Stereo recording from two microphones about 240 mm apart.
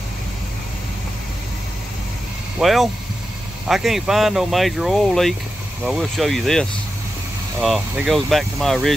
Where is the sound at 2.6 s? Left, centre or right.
Centre.